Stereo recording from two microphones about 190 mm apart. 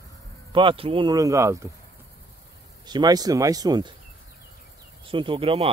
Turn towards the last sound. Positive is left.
turn(degrees=-30)  # may be behind; listen again after turning